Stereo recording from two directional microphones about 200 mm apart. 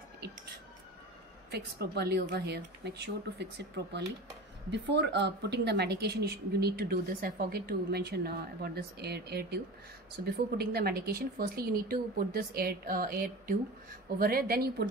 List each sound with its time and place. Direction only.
1.5 s a woman's voice: 55° right (ahead or behind)